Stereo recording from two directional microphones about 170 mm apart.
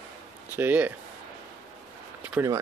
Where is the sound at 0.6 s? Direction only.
10° right (ahead or behind).